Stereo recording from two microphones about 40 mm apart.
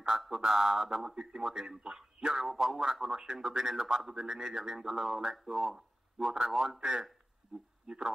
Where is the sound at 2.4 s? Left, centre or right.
Centre.